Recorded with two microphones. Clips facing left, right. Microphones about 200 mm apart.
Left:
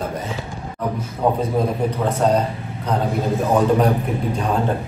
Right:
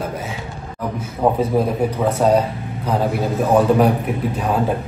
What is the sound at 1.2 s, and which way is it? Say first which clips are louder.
A man's voice: right 2 dB; 5° right (ahead or behind).